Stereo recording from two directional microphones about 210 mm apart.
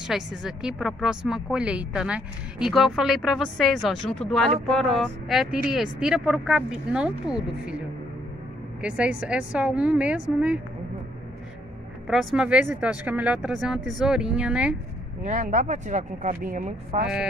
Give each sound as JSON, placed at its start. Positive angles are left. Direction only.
{"t": 0.0, "sound": "speech", "side_deg": -5}
{"t": 8.8, "sound": "speech", "side_deg": -5}
{"t": 12.1, "sound": "speech", "side_deg": 0}
{"t": 15.2, "sound": "speech", "side_deg": -35}